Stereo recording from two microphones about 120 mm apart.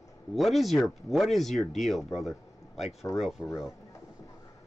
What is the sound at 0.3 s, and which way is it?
Speech, centre (ahead or behind).